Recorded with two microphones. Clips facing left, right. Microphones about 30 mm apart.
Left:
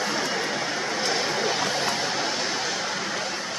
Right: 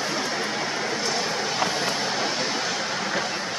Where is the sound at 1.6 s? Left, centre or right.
Centre.